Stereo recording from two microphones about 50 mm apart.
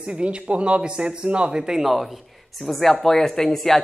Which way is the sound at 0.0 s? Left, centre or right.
Right.